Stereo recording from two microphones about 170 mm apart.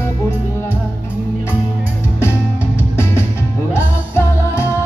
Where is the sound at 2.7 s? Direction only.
15° left (ahead or behind).